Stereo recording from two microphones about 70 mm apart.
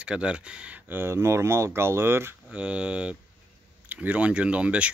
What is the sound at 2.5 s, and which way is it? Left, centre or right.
Speech, centre.